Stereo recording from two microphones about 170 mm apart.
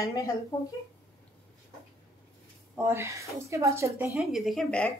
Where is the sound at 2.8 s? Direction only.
15° right (ahead or behind).